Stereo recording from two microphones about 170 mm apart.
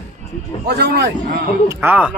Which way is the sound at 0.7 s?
75° right (ahead or behind).